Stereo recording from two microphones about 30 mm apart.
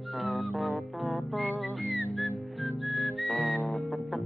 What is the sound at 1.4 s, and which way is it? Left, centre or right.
Music, left.